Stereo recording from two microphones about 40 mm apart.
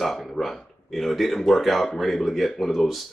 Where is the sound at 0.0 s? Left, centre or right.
Centre.